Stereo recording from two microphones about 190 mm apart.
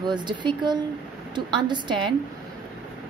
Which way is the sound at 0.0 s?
25° right (ahead or behind).